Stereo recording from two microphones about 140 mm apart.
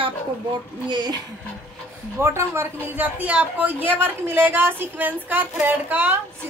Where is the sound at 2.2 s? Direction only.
20° right (ahead or behind).